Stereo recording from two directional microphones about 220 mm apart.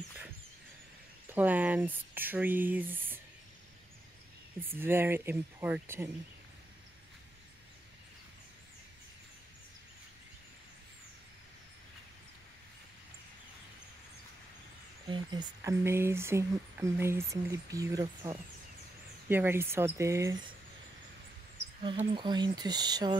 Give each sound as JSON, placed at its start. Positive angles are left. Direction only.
{"t": 1.3, "sound": "speech", "side_deg": -10}
{"t": 4.6, "sound": "speech", "side_deg": -10}
{"t": 15.0, "sound": "speech", "side_deg": -20}
{"t": 21.8, "sound": "speech", "side_deg": -20}